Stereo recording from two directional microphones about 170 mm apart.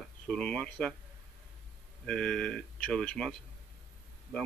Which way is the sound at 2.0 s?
5° left (ahead or behind).